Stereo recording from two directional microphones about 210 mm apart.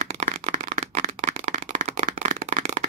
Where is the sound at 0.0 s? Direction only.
35° right (ahead or behind).